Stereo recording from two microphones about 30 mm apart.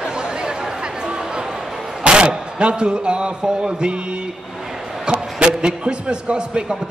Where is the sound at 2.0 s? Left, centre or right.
Right.